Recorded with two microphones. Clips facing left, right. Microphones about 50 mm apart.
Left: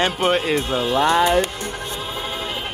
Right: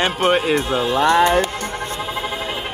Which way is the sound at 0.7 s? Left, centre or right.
Right.